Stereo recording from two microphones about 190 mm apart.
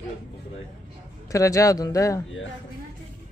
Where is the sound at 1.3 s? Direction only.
15° left (ahead or behind).